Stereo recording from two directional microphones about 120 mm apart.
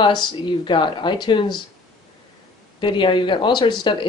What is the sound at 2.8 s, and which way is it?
Speech, 45° left (ahead or behind).